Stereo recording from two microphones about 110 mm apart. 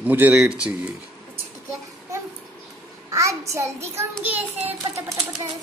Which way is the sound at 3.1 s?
30° right (ahead or behind).